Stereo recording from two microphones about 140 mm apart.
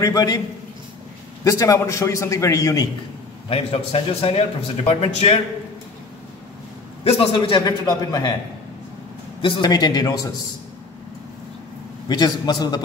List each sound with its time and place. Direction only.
0.0 s a man's voice: 25° left (ahead or behind)
1.4 s a man's voice: 25° left (ahead or behind)
3.4 s a man's voice: 45° left (ahead or behind)
7.1 s a man's voice: 40° left (ahead or behind)
9.4 s a man's voice: 35° left (ahead or behind)
12.1 s a man's voice: 30° left (ahead or behind)